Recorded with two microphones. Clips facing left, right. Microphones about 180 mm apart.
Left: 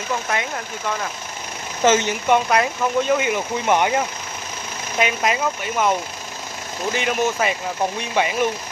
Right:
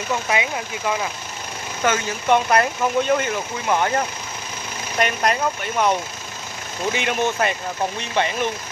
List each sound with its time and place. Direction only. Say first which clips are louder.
0.3 s speech: right 2 dB; 5° right (ahead or behind)
1.8 s speech: left 5 dB; 25° left (ahead or behind)
2.2 s speech: right 3 dB; centre (ahead or behind)
3.3 s speech: left 3 dB; 15° left (ahead or behind)
4.9 s speech: even; 5° left (ahead or behind)